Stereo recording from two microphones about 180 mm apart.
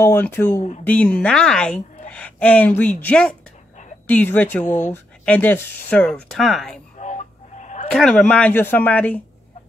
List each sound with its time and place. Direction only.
0.0 s a woman's voice: 10° left (ahead or behind)
4.6 s speech: 40° left (ahead or behind)
4.9 s a woman's voice: 10° left (ahead or behind)
7.0 s a sound: 40° left (ahead or behind)
7.9 s a woman's voice: 5° left (ahead or behind)